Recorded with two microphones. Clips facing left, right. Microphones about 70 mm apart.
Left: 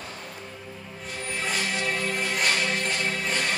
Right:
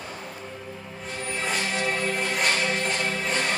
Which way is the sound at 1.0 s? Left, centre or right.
Right.